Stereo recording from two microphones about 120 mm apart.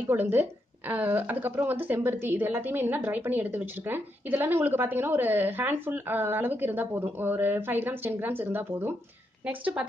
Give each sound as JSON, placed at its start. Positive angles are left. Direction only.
{"t": 0.0, "sound": "a woman's voice", "side_deg": -15}